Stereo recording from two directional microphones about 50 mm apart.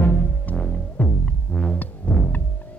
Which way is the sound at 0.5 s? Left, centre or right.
Left.